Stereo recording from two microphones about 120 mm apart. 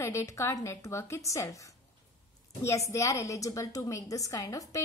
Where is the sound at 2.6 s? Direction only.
25° left (ahead or behind).